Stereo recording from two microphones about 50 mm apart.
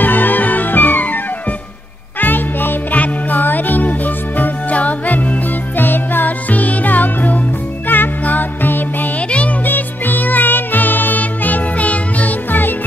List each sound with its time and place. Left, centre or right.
0.0 s music: left
2.1 s music: left
5.8 s music: left